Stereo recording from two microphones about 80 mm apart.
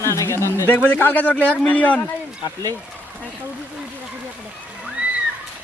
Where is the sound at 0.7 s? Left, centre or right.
Centre.